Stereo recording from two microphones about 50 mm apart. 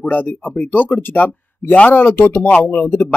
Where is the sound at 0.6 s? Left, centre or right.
Left.